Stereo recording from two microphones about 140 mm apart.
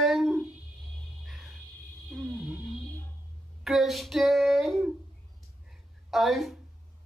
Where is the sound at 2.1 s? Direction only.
10° right (ahead or behind).